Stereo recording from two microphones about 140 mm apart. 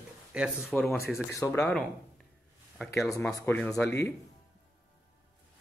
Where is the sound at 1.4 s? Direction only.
15° left (ahead or behind).